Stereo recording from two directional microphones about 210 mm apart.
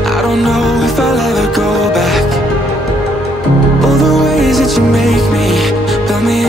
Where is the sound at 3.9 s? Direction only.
Centre (ahead or behind).